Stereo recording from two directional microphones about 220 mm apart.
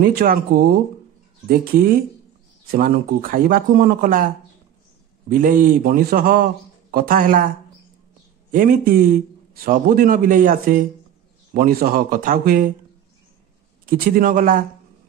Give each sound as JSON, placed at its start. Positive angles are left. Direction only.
{"t": 0.0, "sound": "speech", "side_deg": -45}
{"t": 5.3, "sound": "speech", "side_deg": -40}
{"t": 13.8, "sound": "speech", "side_deg": -40}